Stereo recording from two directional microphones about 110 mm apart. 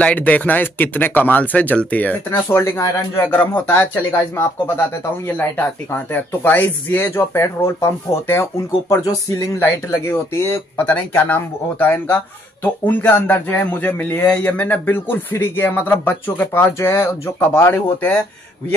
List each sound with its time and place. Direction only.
0.0 s speech: 15° left (ahead or behind)
2.2 s speech: 25° left (ahead or behind)